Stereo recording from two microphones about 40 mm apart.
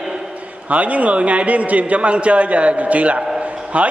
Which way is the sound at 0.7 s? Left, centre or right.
Right.